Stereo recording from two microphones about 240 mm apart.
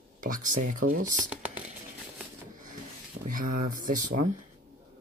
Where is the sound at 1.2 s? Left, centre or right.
Centre.